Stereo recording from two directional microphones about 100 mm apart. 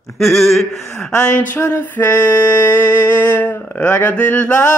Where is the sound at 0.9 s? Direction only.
25° left (ahead or behind).